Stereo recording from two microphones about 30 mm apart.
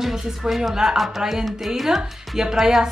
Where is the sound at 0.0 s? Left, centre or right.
Centre.